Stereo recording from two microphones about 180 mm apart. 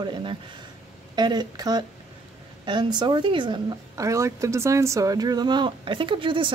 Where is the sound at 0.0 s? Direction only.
30° right (ahead or behind).